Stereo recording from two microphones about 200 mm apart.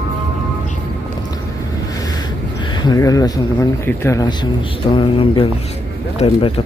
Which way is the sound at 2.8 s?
20° left (ahead or behind).